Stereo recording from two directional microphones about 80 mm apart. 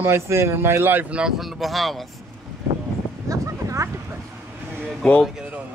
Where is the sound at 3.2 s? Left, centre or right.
Right.